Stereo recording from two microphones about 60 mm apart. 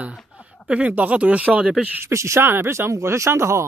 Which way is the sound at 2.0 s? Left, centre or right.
Right.